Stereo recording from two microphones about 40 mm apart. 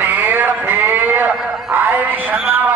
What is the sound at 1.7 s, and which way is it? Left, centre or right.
Music, right.